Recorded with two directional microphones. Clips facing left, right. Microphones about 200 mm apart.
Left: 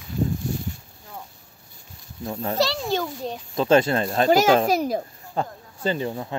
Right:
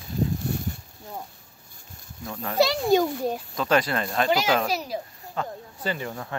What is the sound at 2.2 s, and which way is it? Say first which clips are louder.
Speech: left 5 dB; 25° left (ahead or behind).